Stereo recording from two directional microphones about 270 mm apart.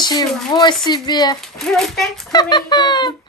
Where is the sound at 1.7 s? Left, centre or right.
Centre.